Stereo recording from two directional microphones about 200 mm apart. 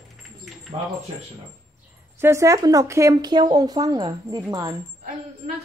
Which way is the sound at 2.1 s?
15° right (ahead or behind).